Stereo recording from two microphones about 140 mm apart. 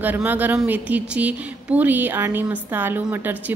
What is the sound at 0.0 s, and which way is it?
A woman's voice, 15° right (ahead or behind).